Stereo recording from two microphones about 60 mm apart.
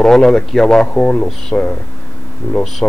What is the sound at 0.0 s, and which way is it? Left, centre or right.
Speech, centre.